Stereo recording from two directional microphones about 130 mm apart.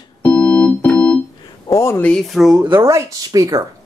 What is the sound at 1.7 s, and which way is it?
Speech, 20° left (ahead or behind).